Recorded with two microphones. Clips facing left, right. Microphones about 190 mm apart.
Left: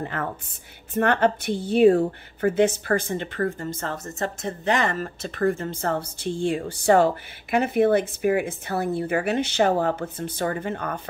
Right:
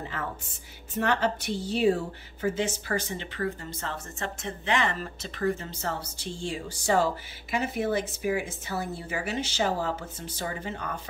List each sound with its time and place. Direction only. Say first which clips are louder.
0.0 s a woman's voice: left 6 dB; 55° left (ahead or behind)